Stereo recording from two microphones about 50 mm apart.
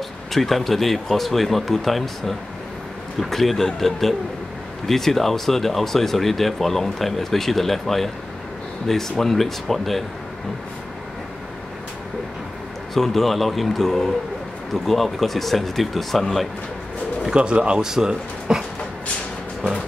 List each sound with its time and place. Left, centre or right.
0.3 s speech: centre
12.9 s speech: centre
17.2 s speech: centre